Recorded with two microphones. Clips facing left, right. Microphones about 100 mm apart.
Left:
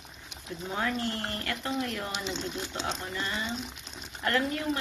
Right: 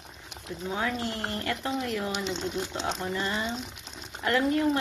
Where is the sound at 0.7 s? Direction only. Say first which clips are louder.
Even; 10° right (ahead or behind).